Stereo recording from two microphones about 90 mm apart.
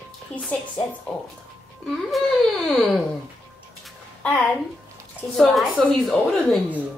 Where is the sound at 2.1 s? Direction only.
5° left (ahead or behind).